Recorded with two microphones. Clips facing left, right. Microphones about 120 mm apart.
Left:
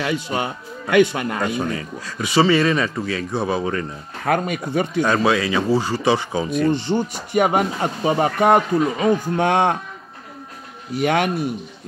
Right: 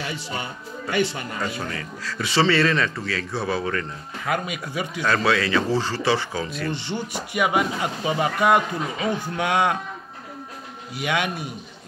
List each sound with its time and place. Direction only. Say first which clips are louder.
0.0 s a man's voice: left 8 dB; 60° left (ahead or behind)
1.6 s speech: left 6 dB; 20° left (ahead or behind)
4.2 s speech: left 6 dB; 50° left (ahead or behind)
5.0 s speech: even; 15° left (ahead or behind)
7.3 s a man's voice: left 4 dB; 45° left (ahead or behind)
11.0 s speech: left 6 dB; 45° left (ahead or behind)